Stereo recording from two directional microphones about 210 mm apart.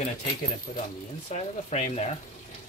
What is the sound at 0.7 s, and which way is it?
Speech, 35° left (ahead or behind).